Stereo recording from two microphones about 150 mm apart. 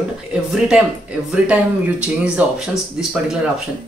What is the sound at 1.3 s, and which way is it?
Speech, 10° right (ahead or behind).